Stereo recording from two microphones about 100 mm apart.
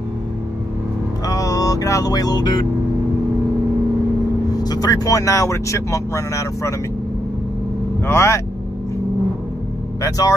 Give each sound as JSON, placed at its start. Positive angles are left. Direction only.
{"t": 1.2, "sound": "music", "side_deg": 35}
{"t": 4.6, "sound": "speech", "side_deg": 40}
{"t": 8.1, "sound": "speech", "side_deg": 30}
{"t": 10.0, "sound": "speech", "side_deg": 35}